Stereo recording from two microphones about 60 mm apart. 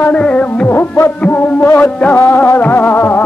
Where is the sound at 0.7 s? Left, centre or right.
Left.